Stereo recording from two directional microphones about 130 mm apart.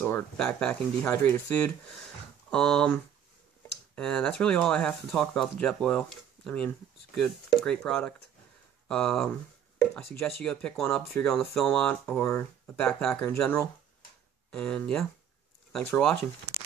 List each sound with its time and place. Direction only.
0.4 s speech: 10° left (ahead or behind)
12.8 s speech: 5° left (ahead or behind)
14.5 s speech: 10° left (ahead or behind)